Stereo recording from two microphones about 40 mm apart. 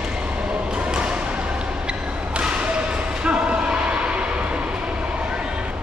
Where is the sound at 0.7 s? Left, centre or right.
Right.